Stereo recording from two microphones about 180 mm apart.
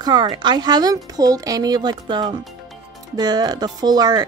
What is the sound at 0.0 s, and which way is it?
Speech, 25° right (ahead or behind).